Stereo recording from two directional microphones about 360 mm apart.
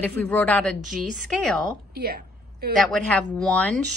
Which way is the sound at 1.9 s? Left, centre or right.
Right.